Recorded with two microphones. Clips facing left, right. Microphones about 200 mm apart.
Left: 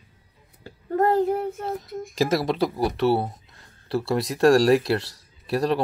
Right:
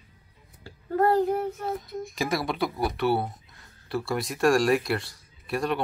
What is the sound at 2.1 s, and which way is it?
Speech, 40° left (ahead or behind).